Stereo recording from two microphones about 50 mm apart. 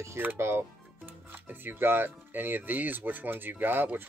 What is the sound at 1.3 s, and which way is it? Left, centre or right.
Speech, right.